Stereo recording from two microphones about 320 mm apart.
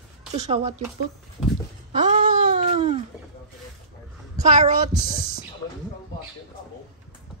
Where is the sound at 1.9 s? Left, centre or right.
Right.